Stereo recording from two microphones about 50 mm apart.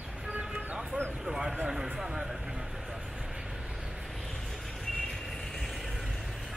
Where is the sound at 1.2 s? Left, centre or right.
Centre.